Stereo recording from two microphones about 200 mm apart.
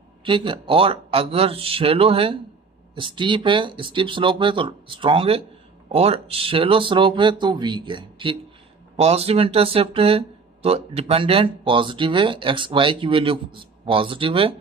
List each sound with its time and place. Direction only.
0.2 s speech: 25° right (ahead or behind)